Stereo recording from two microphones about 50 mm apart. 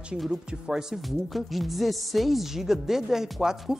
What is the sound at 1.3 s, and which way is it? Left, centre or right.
Speech, centre.